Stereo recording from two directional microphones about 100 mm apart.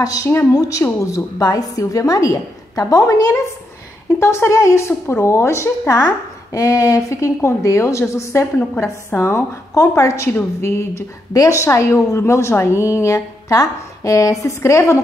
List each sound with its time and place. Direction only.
0.0 s a woman's voice: 35° left (ahead or behind)
6.5 s a woman's voice: 35° left (ahead or behind)